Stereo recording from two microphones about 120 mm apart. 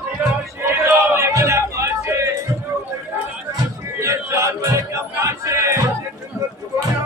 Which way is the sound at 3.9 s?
25° right (ahead or behind).